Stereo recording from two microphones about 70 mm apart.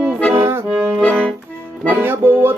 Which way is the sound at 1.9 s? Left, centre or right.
Right.